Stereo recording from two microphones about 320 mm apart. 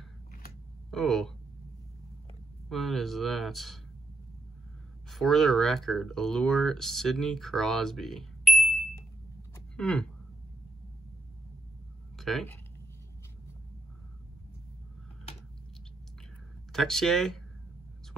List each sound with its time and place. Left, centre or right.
0.9 s speech: centre
2.7 s speech: centre
5.1 s speech: centre
12.2 s speech: centre
16.7 s speech: centre